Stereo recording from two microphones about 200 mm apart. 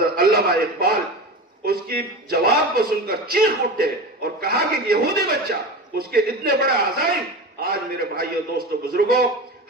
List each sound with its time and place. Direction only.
0.0 s a man's voice: 50° right (ahead or behind)